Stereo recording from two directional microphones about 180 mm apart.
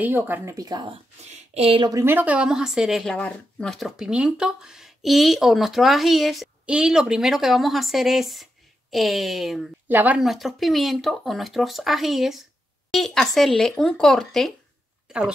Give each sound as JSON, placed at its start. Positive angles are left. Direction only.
{"t": 0.0, "sound": "speech", "side_deg": -10}
{"t": 1.3, "sound": "speech", "side_deg": -35}
{"t": 1.9, "sound": "speech", "side_deg": -15}